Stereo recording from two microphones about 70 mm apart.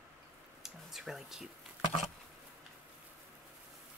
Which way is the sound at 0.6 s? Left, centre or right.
Centre.